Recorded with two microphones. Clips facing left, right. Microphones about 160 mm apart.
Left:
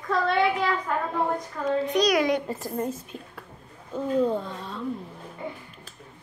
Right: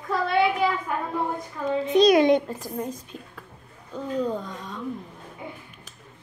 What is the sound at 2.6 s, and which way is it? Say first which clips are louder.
A child's voice: left 2 dB; 5° left (ahead or behind).